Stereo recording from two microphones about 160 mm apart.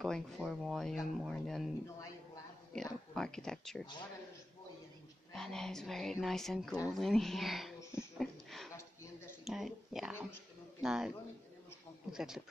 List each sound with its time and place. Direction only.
0.0 s speech: 5° left (ahead or behind)
2.7 s speech: 5° left (ahead or behind)
5.3 s speech: 5° left (ahead or behind)
8.2 s a sound: centre (ahead or behind)
8.7 s a sound: 20° left (ahead or behind)
9.4 s speech: centre (ahead or behind)